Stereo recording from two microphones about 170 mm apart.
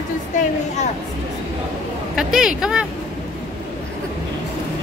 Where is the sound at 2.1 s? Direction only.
5° right (ahead or behind).